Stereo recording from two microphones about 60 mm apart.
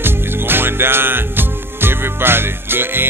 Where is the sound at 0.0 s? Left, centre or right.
Right.